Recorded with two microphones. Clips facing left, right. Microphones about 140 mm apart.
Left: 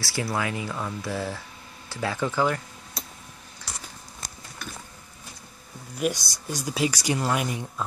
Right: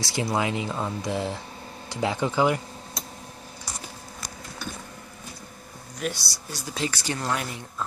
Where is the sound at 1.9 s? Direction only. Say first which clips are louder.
Right 2 dB; 20° right (ahead or behind).